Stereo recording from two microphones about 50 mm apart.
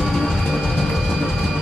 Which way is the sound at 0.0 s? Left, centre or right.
Centre.